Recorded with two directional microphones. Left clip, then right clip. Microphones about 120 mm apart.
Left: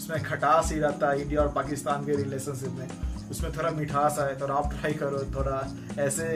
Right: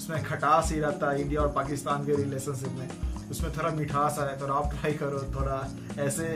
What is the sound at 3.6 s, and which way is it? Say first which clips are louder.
Speech: left 2 dB; 20° left (ahead or behind).